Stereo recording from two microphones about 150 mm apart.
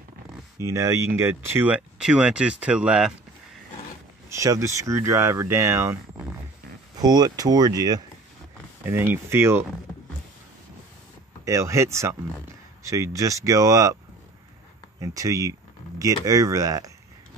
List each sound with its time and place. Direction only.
0.7 s speech: 20° right (ahead or behind)
4.3 s speech: 20° right (ahead or behind)
7.0 s speech: 25° right (ahead or behind)
8.8 s speech: 15° right (ahead or behind)
11.4 s speech: 20° right (ahead or behind)
15.0 s speech: 20° right (ahead or behind)